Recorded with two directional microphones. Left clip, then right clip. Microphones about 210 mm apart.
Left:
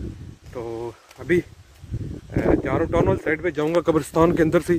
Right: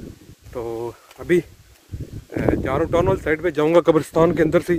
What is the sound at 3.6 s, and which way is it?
Speech, 40° right (ahead or behind).